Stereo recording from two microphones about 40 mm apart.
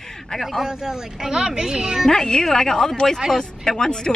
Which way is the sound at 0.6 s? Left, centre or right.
Centre.